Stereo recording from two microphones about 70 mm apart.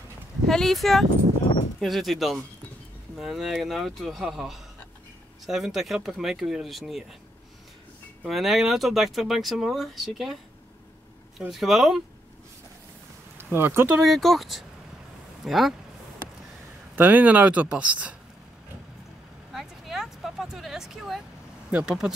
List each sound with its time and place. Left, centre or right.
0.5 s speech: centre
8.3 s speech: centre
11.3 s speech: centre
13.4 s speech: right
14.0 s speech: centre
16.9 s speech: right
19.5 s a sound: centre
21.6 s speech: centre